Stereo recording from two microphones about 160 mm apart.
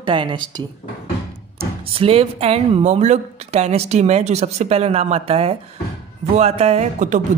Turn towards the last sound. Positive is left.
turn(degrees=-45)  # may be behind; listen again after turning